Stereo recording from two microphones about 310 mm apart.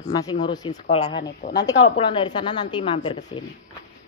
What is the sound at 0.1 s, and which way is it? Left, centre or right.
Speech, centre.